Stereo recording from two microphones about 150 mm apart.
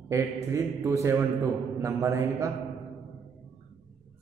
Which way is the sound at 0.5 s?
20° right (ahead or behind).